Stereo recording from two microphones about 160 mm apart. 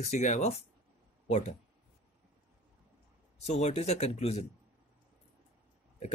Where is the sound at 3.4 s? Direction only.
45° left (ahead or behind).